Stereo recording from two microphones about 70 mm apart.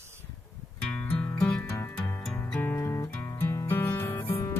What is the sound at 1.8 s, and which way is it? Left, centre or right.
Music, left.